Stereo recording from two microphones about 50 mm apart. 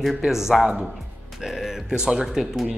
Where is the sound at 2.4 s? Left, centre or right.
Centre.